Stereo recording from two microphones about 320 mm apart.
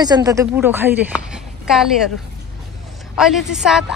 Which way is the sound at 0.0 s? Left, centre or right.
Centre.